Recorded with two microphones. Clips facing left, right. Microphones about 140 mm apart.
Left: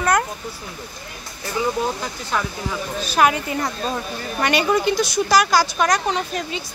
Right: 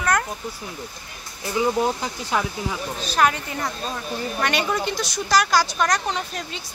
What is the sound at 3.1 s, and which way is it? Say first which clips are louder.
A woman's voice: left 3 dB; 10° left (ahead or behind).